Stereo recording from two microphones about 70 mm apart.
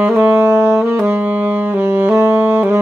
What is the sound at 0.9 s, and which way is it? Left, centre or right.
Saxophone, right.